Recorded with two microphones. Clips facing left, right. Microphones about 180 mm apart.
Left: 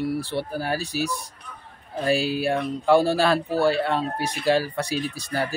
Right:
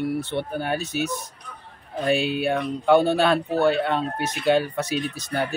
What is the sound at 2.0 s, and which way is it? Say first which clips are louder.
Speech: even; centre (ahead or behind).